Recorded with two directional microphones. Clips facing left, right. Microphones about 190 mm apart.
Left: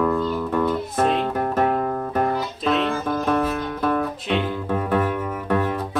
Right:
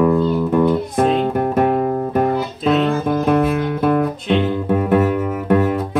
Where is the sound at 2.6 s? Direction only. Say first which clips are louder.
Right 5 dB; centre (ahead or behind).